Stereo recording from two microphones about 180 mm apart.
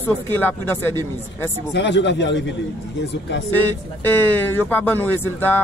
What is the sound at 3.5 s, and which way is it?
Speech, 10° left (ahead or behind).